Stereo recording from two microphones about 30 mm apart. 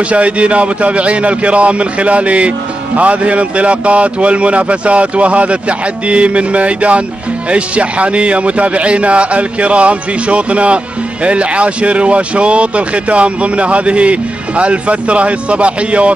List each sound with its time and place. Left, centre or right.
0.0 s speech: right